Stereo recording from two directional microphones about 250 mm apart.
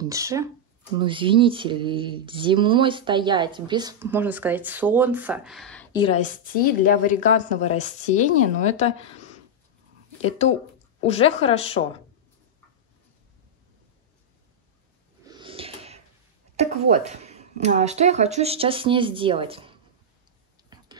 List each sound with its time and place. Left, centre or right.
0.0 s speech: centre
6.2 s a woman's voice: left
10.2 s a woman's voice: left
15.2 s a sound: centre
16.5 s speech: right
20.7 s whispering: centre